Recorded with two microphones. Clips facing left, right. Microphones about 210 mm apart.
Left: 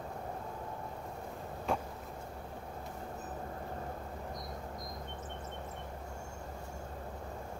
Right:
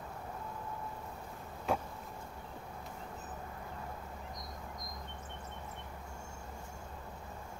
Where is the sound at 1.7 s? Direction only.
Centre (ahead or behind).